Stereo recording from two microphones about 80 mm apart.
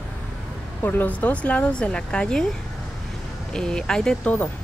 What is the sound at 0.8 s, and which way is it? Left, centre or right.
Speech, left.